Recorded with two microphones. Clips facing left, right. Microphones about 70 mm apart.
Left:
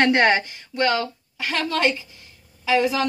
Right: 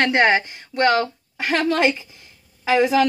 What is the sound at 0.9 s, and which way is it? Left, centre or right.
Speech, right.